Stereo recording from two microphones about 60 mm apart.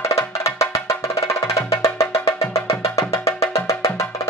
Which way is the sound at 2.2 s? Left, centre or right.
Left.